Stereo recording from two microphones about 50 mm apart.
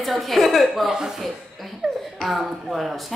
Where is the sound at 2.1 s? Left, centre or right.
Centre.